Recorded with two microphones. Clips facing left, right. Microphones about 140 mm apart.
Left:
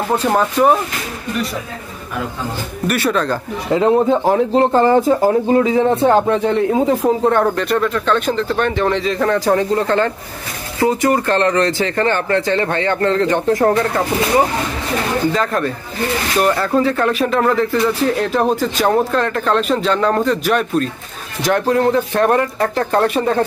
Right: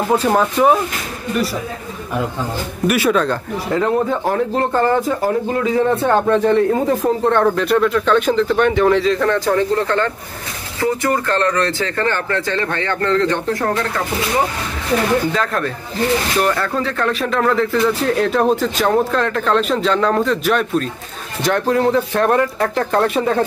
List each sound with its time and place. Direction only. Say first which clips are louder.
0.1 s speech: even; centre (ahead or behind)
2.9 s speech: right 1 dB; 5° right (ahead or behind)
3.7 s speech: left 4 dB; 25° left (ahead or behind)
6.2 s speech: right 2 dB; 10° left (ahead or behind)
9.5 s speech: left 1 dB; 20° left (ahead or behind)
15.3 s speech: left 2 dB; 5° left (ahead or behind)